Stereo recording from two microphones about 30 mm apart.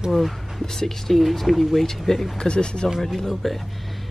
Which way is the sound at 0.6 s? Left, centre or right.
Centre.